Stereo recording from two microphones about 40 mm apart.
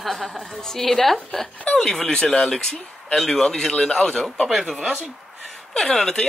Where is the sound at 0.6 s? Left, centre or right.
Centre.